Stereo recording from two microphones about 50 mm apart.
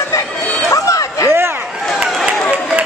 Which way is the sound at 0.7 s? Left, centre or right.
Left.